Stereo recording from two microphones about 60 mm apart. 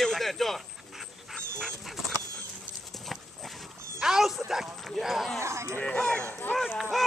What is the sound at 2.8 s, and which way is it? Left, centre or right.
Horse, centre.